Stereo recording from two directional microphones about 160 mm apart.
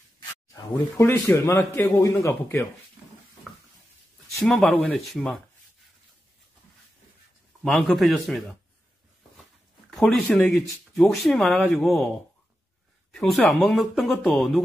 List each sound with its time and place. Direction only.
0.9 s a man's voice: 15° left (ahead or behind)
4.4 s speech: 5° left (ahead or behind)
7.6 s speech: centre (ahead or behind)
9.8 s speech: 5° left (ahead or behind)
13.1 s speech: centre (ahead or behind)